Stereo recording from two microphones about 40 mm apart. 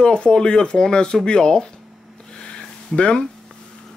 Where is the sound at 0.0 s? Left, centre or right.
Left.